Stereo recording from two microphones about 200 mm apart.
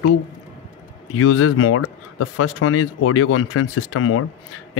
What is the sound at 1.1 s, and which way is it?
Speech, 90° left.